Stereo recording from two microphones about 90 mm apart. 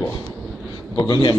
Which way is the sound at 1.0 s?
60° left (ahead or behind).